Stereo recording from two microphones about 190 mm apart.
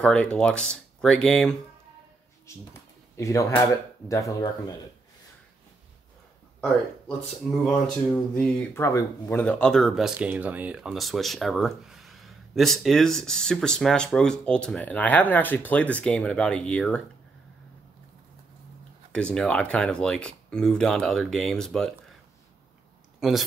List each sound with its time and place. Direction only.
0.0 s speech: 5° left (ahead or behind)
2.5 s speech: 15° left (ahead or behind)
7.6 s speech: 5° left (ahead or behind)
19.1 s speech: 5° left (ahead or behind)
23.2 s speech: centre (ahead or behind)